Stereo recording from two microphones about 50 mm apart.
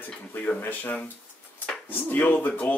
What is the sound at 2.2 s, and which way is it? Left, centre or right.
Speech, left.